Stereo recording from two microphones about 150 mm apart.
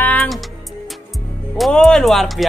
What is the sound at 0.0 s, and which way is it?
Music, 10° left (ahead or behind).